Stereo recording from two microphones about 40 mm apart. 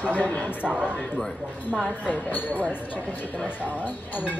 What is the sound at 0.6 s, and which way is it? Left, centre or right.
Speech, right.